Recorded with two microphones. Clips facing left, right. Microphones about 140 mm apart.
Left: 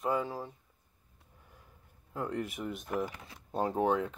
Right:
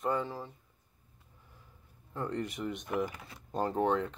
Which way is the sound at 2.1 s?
5° left (ahead or behind).